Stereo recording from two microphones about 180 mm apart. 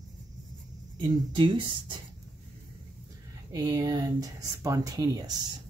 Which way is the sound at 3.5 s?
20° right (ahead or behind).